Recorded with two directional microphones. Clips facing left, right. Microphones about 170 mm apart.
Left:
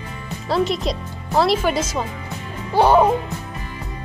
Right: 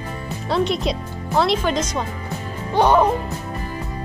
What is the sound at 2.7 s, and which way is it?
Music, 10° left (ahead or behind).